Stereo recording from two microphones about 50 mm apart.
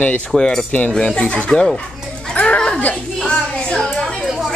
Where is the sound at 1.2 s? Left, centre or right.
Left.